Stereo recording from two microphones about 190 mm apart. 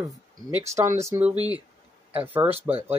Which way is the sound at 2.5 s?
30° right (ahead or behind).